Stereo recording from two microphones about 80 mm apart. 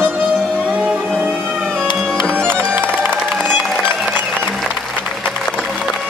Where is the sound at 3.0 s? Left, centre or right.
Right.